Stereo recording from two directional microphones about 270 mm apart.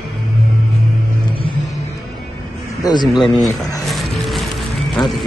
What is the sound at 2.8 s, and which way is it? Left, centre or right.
Speech, centre.